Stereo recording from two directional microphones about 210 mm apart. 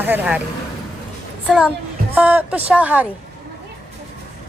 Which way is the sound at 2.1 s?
10° right (ahead or behind).